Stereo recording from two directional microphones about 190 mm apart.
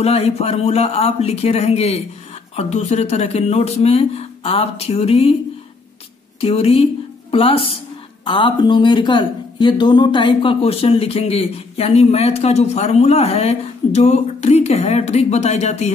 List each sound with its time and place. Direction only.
0.0 s speech: 30° left (ahead or behind)
6.4 s a woman's voice: 30° left (ahead or behind)